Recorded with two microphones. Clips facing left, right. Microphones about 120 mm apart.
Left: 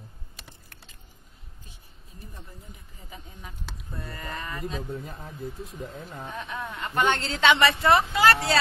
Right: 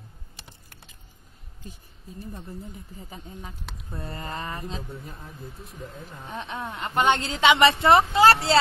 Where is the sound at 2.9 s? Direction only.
35° right (ahead or behind).